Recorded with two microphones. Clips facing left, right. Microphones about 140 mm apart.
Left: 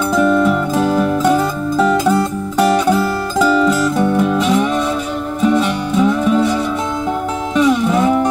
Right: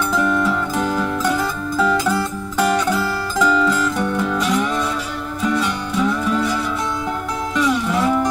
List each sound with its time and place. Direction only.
0.2 s music: 25° left (ahead or behind)